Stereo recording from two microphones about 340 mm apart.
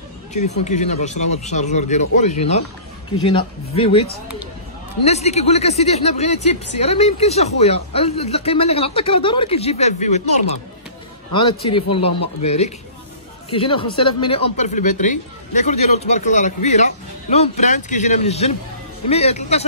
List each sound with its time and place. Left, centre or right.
0.3 s speech: centre
11.6 s speech: centre